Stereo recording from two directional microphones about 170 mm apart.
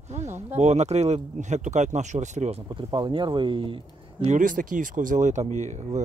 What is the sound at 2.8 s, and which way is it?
Speech, 25° right (ahead or behind).